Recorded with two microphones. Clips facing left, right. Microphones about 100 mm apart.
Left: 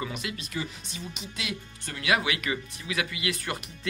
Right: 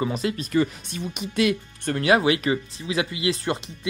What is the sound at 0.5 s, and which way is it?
Speech, 55° right (ahead or behind).